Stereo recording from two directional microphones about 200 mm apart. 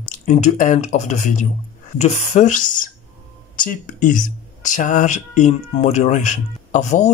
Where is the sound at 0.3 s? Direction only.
40° left (ahead or behind).